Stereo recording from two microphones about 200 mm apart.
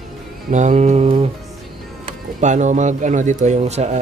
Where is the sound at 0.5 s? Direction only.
35° right (ahead or behind).